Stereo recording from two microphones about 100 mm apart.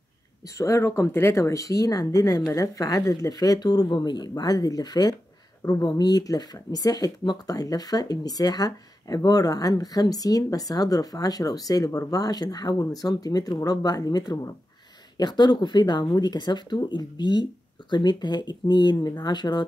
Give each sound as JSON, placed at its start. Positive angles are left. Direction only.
{"t": 0.6, "sound": "speech", "side_deg": 30}